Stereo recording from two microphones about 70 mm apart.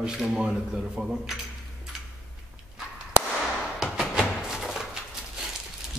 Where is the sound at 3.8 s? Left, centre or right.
Centre.